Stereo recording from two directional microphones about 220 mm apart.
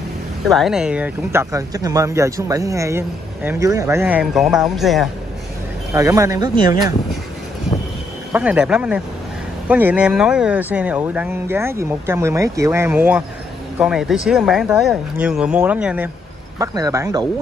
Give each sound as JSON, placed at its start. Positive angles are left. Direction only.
{"t": 0.5, "sound": "speech", "side_deg": 0}
{"t": 5.9, "sound": "speech", "side_deg": -15}
{"t": 8.3, "sound": "speech", "side_deg": -5}